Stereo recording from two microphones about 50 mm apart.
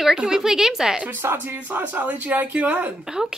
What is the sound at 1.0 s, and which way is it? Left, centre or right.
Speech, right.